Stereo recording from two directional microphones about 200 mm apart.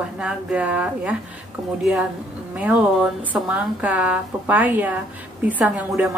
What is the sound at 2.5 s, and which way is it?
A woman's voice, 5° right (ahead or behind).